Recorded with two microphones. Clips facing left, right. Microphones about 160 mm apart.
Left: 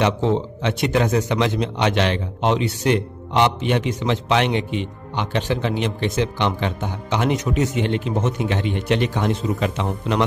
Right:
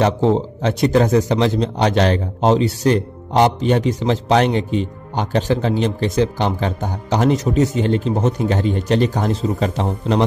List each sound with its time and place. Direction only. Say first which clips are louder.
0.0 s a man's voice: right 3 dB; 40° right (ahead or behind)